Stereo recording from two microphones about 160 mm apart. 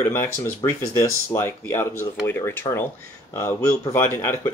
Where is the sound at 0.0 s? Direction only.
15° left (ahead or behind).